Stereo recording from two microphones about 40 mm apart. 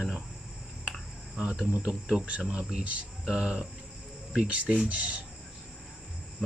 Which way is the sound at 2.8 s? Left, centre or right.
Right.